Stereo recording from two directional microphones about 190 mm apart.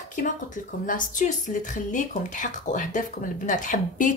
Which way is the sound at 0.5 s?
40° left (ahead or behind).